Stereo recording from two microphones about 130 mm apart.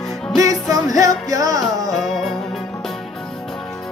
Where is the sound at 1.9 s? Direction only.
Centre (ahead or behind).